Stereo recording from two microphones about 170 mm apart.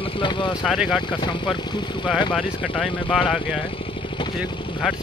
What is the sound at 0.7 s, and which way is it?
Speech, centre (ahead or behind).